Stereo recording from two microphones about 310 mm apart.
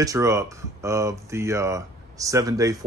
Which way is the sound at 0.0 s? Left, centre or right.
Centre.